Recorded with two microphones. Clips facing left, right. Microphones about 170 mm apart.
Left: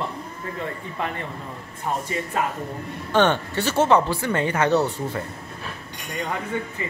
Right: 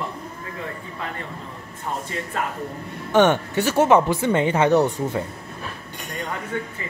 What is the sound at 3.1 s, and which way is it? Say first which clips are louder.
Speech: right 3 dB; 15° right (ahead or behind).